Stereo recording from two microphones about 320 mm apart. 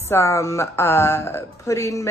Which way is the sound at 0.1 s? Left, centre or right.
Centre.